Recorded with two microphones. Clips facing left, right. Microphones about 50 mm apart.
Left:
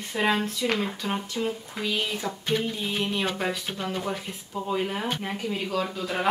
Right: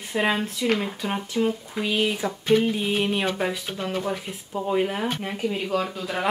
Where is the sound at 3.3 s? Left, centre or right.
Centre.